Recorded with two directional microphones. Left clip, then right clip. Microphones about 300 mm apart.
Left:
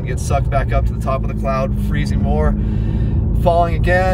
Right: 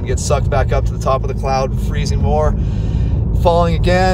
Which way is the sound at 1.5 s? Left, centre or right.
Centre.